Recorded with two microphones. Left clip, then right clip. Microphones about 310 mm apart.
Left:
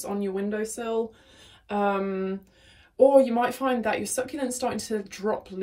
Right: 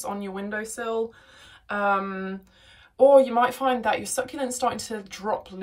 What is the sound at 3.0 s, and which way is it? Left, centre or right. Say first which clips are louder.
Speech: right 2 dB; right.